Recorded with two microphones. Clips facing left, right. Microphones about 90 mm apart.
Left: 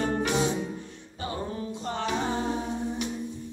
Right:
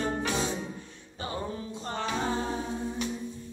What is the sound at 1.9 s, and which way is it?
Music, 15° left (ahead or behind).